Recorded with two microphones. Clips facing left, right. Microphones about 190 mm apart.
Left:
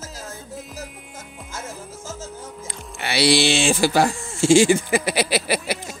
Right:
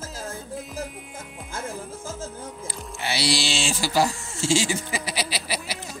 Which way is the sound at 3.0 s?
65° left (ahead or behind).